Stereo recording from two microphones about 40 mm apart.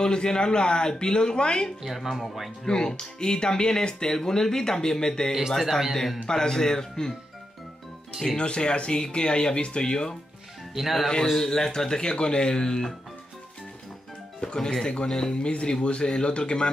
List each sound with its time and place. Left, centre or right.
0.0 s speech: left
1.8 s speech: centre
2.6 s speech: centre
8.4 s speech: left
10.7 s speech: centre
11.3 s speech: centre
14.4 s speech: centre